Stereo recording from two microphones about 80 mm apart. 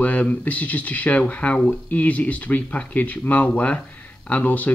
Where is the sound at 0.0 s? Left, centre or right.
Centre.